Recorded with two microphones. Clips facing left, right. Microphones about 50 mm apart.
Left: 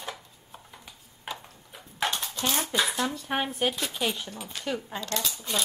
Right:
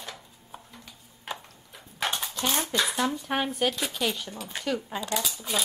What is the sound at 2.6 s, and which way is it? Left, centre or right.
Speech, centre.